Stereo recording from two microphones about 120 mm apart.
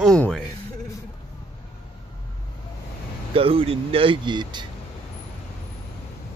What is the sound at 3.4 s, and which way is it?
Speech, 50° right (ahead or behind).